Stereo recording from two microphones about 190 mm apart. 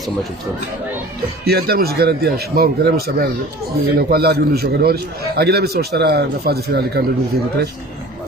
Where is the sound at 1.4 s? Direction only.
55° right (ahead or behind).